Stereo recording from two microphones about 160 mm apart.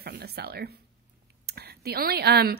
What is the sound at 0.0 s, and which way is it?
Speech, 80° right.